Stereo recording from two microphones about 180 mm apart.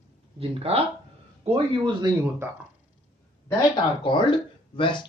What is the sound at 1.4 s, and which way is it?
Speech, 30° right (ahead or behind).